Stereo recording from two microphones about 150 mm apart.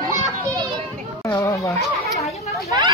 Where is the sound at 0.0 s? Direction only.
25° right (ahead or behind).